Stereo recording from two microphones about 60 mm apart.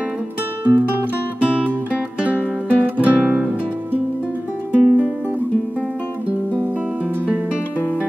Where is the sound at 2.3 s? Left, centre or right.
Left.